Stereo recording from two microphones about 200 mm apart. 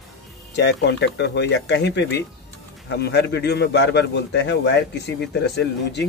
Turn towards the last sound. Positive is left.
turn(degrees=60)  # may be behind; listen again after turning